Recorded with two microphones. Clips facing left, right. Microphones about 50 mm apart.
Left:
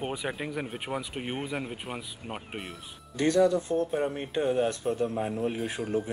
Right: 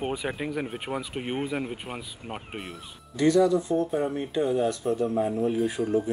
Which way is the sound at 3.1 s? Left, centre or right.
Left.